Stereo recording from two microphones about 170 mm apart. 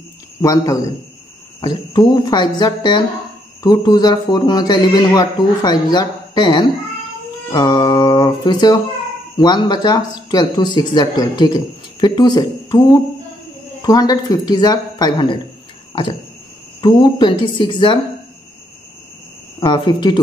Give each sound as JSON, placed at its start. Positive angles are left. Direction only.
{"t": 0.4, "sound": "speech", "side_deg": 20}
{"t": 13.8, "sound": "speech", "side_deg": 25}
{"t": 15.9, "sound": "a sound", "side_deg": 30}
{"t": 16.8, "sound": "speech", "side_deg": 30}
{"t": 19.6, "sound": "speech", "side_deg": 25}